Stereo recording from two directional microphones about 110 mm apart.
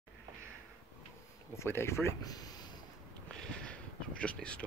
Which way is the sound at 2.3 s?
35° left (ahead or behind).